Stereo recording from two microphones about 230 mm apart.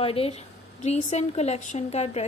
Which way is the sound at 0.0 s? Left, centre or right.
Left.